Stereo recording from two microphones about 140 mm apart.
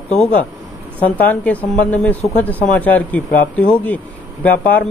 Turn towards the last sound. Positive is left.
turn(degrees=10)  # may be behind; listen again after turning